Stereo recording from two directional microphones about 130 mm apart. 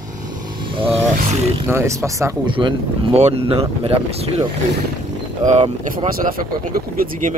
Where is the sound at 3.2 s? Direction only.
55° right (ahead or behind).